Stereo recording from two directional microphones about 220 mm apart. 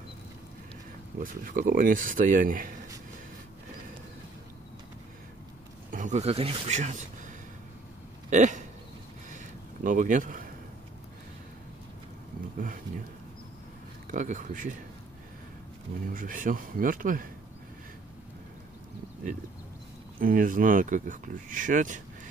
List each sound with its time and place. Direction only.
1.2 s speech: 40° right (ahead or behind)
5.9 s speech: 35° right (ahead or behind)
8.3 s speech: 35° right (ahead or behind)
9.8 s speech: 35° right (ahead or behind)
12.5 s speech: 40° right (ahead or behind)
14.1 s speech: 35° right (ahead or behind)
16.1 s speech: 40° right (ahead or behind)
20.2 s speech: 40° right (ahead or behind)